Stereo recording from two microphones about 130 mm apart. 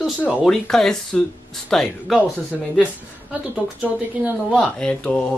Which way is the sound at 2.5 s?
10° right (ahead or behind).